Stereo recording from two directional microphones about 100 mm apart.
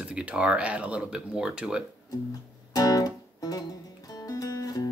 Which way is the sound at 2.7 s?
40° left (ahead or behind).